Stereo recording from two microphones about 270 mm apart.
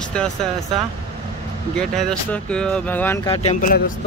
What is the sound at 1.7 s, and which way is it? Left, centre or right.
Speech, centre.